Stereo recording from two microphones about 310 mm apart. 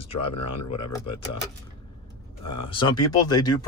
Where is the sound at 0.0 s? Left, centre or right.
Centre.